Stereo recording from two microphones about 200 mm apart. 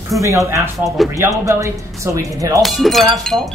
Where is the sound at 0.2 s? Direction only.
15° right (ahead or behind).